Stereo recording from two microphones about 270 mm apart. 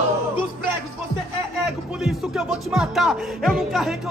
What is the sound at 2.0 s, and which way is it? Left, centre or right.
Music, centre.